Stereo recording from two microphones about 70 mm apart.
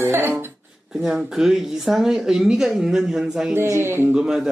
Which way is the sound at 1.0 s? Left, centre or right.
Centre.